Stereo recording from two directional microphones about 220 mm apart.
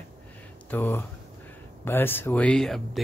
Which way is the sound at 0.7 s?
10° left (ahead or behind).